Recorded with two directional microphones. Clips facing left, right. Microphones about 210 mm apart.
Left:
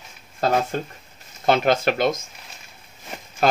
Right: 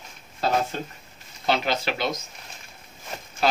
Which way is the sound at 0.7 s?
50° left (ahead or behind).